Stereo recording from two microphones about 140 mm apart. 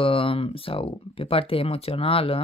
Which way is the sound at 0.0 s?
40° left (ahead or behind).